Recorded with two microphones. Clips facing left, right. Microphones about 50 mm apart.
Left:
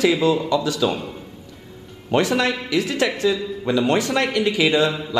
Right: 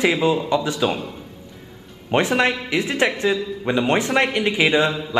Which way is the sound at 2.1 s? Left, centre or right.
Right.